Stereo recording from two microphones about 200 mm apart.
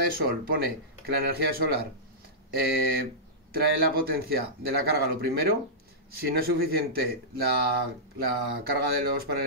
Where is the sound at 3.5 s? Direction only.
50° right (ahead or behind).